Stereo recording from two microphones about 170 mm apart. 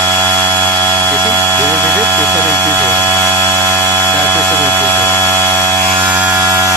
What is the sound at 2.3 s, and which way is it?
Vehicle, 10° left (ahead or behind).